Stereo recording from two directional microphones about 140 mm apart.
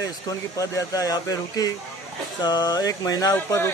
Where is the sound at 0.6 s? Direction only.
25° left (ahead or behind).